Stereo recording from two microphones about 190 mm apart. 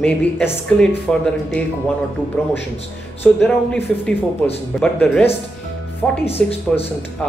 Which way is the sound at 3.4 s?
5° left (ahead or behind).